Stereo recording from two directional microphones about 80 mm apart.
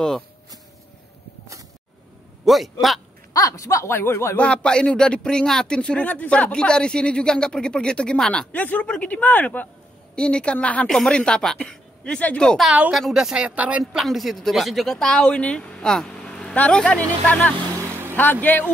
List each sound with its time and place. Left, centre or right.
2.4 s a man's voice: centre
3.3 s speech: left
3.9 s speech: left
4.4 s speech: centre
12.9 s speech: centre
14.0 s speech: centre
17.7 s vehicle: right
18.1 s speech: left